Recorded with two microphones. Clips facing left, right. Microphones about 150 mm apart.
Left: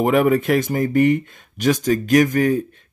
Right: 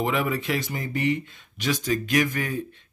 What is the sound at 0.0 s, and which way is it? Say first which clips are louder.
A man's voice: left 9 dB; 50° left (ahead or behind).